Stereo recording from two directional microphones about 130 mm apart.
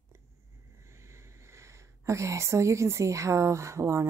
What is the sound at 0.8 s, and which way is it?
A woman's voice, 20° right (ahead or behind).